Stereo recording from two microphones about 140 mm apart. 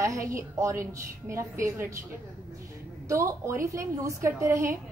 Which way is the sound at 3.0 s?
20° right (ahead or behind).